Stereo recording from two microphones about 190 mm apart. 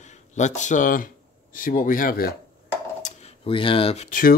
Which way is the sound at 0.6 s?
40° left (ahead or behind).